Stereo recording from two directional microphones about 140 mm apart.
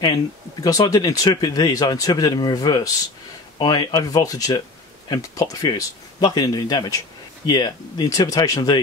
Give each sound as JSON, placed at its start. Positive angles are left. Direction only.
{"t": 0.0, "sound": "speech", "side_deg": 30}